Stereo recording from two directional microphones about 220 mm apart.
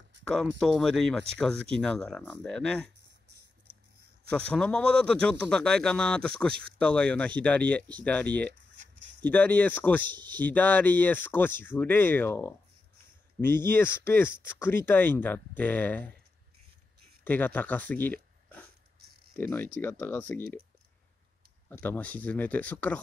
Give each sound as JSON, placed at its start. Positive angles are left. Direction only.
{"t": 0.3, "sound": "speech", "side_deg": 5}
{"t": 4.3, "sound": "speech", "side_deg": 5}
{"t": 13.9, "sound": "speech", "side_deg": 10}
{"t": 17.2, "sound": "speech", "side_deg": 10}
{"t": 19.5, "sound": "speech", "side_deg": 10}
{"t": 21.6, "sound": "speech", "side_deg": 10}